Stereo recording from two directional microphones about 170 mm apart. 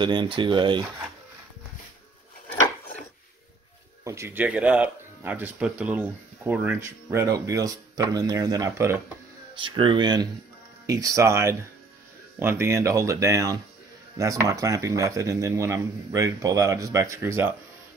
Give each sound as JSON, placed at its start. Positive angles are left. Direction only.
{"t": 0.0, "sound": "speech", "side_deg": -30}
{"t": 4.0, "sound": "speech", "side_deg": -15}
{"t": 9.6, "sound": "speech", "side_deg": -30}